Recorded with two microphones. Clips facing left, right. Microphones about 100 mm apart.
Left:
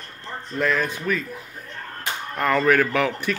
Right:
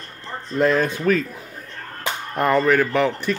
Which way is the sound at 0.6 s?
25° right (ahead or behind).